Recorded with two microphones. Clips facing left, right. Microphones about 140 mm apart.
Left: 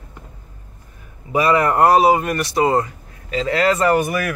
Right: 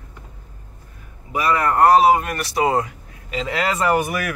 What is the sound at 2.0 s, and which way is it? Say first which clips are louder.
Speech: left 1 dB; centre (ahead or behind).